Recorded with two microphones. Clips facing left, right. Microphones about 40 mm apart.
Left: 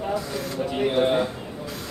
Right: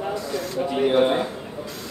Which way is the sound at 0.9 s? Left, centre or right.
Centre.